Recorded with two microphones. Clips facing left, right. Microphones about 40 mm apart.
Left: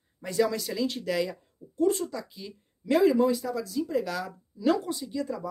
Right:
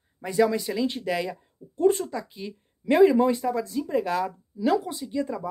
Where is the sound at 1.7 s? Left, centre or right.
Right.